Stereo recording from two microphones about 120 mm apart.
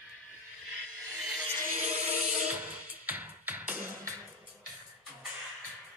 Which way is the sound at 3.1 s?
15° right (ahead or behind).